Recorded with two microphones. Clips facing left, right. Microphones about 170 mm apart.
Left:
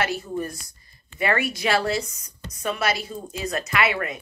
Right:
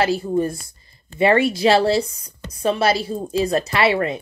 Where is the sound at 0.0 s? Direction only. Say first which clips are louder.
Right 7 dB; 30° right (ahead or behind).